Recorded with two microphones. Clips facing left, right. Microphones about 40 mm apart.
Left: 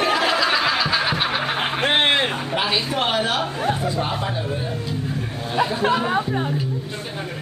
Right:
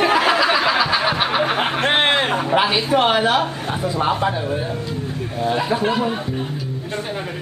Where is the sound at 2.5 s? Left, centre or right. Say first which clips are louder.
Right 8 dB; centre.